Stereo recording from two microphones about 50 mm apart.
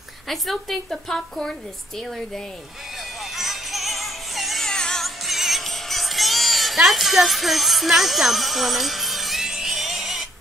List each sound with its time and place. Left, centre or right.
0.3 s a woman's voice: centre
1.1 s speech: centre
3.3 s music: centre
4.6 s music: centre
5.0 s music: centre